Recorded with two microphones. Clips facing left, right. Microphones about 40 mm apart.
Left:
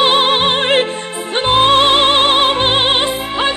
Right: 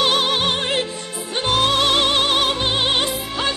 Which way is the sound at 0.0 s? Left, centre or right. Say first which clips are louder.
Left 6 dB; left.